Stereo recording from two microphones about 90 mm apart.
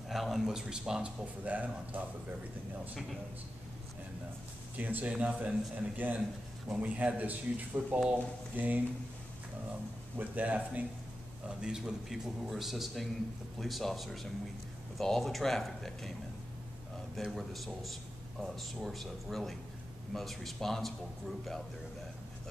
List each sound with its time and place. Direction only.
0.1 s speech: centre (ahead or behind)
4.7 s speech: 20° right (ahead or behind)
10.1 s a man's voice: 15° right (ahead or behind); by 16.1 s 5° left (ahead or behind)
17.2 s a man's voice: centre (ahead or behind)